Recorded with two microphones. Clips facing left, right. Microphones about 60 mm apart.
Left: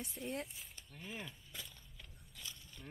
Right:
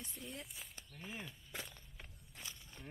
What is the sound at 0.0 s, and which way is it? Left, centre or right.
Speech, centre.